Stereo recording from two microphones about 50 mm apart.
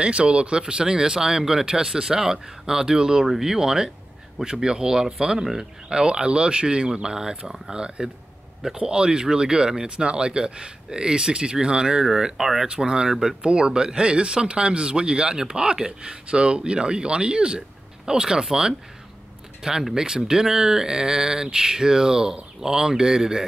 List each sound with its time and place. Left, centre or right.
0.0 s speech: right